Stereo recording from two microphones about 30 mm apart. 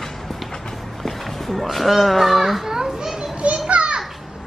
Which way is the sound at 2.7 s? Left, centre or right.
Centre.